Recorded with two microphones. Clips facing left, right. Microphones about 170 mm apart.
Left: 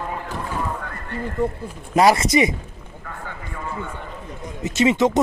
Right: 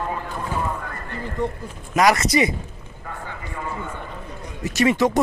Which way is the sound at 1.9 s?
25° left (ahead or behind).